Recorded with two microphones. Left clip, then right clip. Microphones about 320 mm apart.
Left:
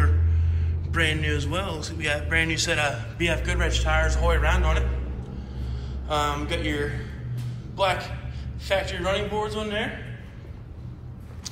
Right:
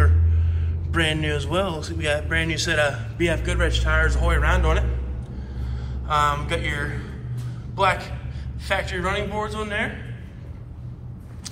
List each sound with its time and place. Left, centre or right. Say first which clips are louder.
0.9 s a man's voice: right 2 dB; centre
6.0 s a man's voice: right 5 dB; centre
8.6 s a man's voice: right 1 dB; centre